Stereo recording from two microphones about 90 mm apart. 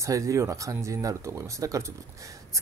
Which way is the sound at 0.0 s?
35° right (ahead or behind).